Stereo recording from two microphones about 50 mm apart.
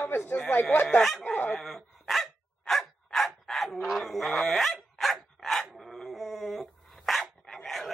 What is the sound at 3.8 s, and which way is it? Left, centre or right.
Dog, centre.